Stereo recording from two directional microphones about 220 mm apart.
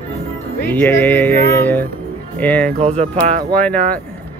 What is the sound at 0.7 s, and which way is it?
Speech, 10° left (ahead or behind).